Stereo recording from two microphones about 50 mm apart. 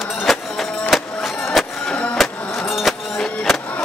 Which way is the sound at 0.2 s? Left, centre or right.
Centre.